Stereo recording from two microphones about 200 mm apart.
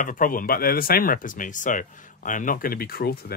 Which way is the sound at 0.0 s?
40° left (ahead or behind).